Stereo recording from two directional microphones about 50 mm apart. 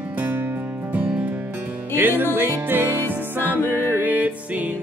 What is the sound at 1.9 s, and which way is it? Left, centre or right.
Music, right.